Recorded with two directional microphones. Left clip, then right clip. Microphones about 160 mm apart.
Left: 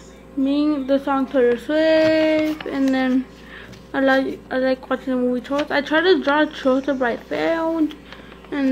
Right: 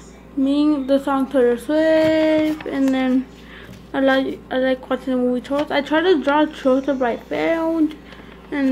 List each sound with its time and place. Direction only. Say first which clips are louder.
0.5 s female singing: right 2 dB; 15° right (ahead or behind)
2.7 s a woman's voice: left 1 dB; 5° right (ahead or behind)